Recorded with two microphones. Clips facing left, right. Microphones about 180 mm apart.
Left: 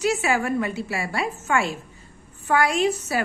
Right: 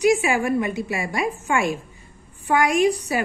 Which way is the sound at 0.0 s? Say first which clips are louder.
Right 4 dB; 15° right (ahead or behind).